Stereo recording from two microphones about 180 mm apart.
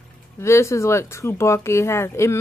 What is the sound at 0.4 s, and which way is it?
Speech, 15° left (ahead or behind).